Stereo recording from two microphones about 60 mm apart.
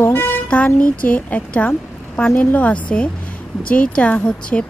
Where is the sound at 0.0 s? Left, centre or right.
Left.